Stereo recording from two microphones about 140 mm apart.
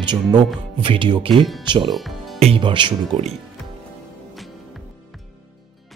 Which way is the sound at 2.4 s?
40° right (ahead or behind).